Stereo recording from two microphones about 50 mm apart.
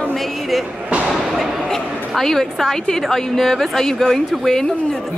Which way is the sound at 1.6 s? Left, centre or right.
Centre.